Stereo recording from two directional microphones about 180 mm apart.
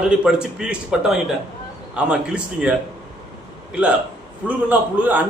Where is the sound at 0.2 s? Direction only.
5° right (ahead or behind).